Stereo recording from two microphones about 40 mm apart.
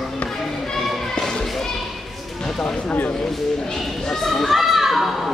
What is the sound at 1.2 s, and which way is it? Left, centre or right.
Children playing, centre.